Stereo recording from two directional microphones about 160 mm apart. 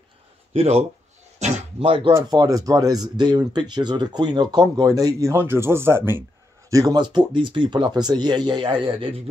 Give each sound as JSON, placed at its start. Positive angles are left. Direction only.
{"t": 0.5, "sound": "speech", "side_deg": -40}
{"t": 1.4, "sound": "a sound", "side_deg": -40}
{"t": 2.1, "sound": "speech", "side_deg": -25}